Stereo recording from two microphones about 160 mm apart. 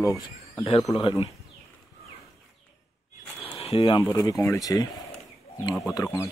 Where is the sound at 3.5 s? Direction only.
35° left (ahead or behind).